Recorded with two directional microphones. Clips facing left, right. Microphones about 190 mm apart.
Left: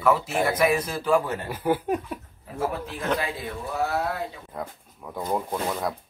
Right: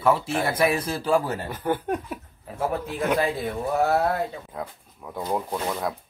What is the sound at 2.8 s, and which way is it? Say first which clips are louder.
Speech: right 3 dB; 10° right (ahead or behind).